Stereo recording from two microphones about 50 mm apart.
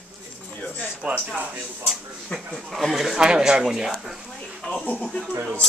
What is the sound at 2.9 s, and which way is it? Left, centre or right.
Speech, centre.